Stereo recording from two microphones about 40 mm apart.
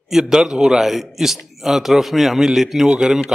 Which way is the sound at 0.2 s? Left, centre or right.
Centre.